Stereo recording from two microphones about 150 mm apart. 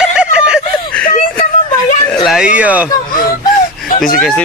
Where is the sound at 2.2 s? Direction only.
5° right (ahead or behind).